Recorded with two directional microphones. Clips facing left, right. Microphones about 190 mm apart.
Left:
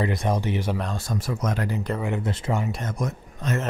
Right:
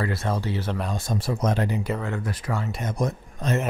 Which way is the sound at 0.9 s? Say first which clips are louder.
Right 2 dB; 25° right (ahead or behind).